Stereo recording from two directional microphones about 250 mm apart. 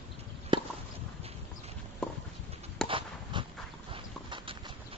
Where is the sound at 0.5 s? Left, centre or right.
Centre.